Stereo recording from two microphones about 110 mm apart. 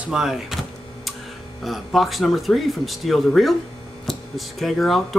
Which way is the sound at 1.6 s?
Centre (ahead or behind).